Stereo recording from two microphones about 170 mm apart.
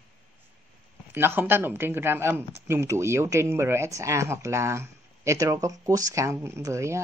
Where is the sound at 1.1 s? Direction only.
15° right (ahead or behind).